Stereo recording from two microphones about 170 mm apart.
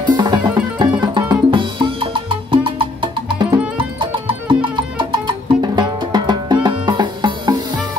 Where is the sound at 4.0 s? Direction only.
30° right (ahead or behind).